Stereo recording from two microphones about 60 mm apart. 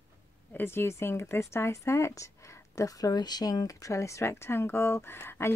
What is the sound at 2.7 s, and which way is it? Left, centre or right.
Speech, left.